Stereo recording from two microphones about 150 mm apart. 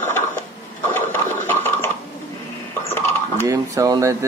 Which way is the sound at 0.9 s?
15° left (ahead or behind).